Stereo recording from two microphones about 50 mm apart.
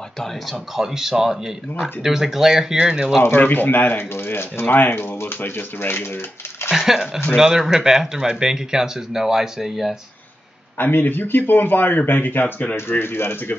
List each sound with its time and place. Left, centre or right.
0.7 s speech: centre
3.2 s speech: left
6.7 s speech: centre
10.8 s a man's voice: left
13.0 s speech: left